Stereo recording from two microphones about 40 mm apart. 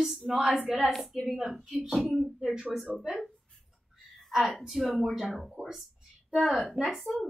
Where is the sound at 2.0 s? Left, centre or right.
Right.